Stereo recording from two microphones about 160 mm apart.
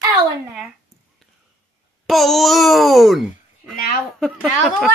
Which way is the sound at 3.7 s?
70° left (ahead or behind).